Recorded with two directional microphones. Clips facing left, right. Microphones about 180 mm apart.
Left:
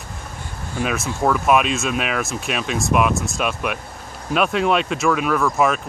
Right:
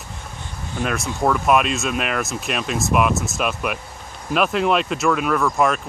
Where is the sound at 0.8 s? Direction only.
Centre (ahead or behind).